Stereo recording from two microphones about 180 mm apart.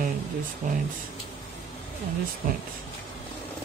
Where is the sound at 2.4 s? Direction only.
45° right (ahead or behind).